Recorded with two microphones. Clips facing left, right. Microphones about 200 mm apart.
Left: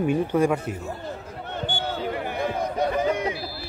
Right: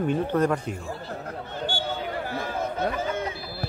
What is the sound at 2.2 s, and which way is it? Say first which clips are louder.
Chatter: left 3 dB; 20° left (ahead or behind).